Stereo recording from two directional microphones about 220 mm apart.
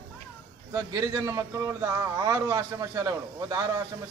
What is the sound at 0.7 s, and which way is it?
A man's voice, 15° right (ahead or behind).